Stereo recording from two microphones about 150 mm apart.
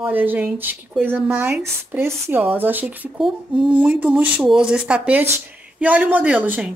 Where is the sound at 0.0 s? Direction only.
10° right (ahead or behind).